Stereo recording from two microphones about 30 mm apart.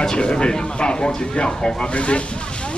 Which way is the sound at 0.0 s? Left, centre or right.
Left.